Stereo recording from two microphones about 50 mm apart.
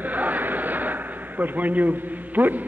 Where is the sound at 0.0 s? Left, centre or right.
Right.